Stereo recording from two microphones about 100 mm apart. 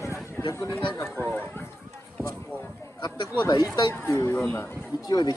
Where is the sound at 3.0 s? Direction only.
50° left (ahead or behind).